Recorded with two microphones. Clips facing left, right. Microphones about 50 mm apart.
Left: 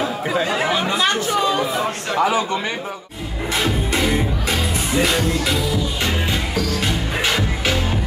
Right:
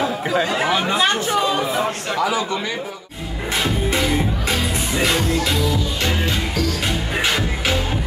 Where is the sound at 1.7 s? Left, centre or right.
Centre.